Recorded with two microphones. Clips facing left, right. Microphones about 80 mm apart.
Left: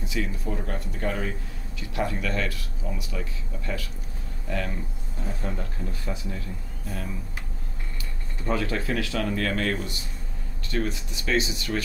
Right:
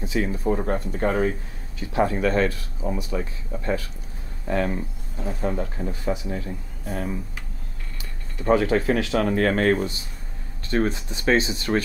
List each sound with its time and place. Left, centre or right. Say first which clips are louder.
0.0 s speech: right 6 dB; right
8.5 s speech: right 7 dB; right
9.0 s speech: right 6 dB; right